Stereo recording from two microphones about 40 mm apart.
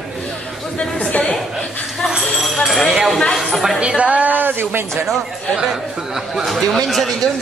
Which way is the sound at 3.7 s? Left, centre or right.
Right.